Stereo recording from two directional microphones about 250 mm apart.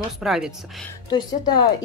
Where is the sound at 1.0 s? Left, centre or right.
Centre.